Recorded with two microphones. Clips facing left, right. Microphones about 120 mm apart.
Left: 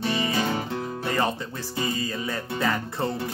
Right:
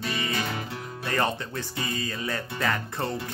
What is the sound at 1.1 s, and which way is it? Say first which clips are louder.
Music: even; 5° left (ahead or behind).